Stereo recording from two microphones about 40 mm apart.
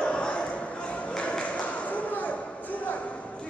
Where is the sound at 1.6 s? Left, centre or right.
Left.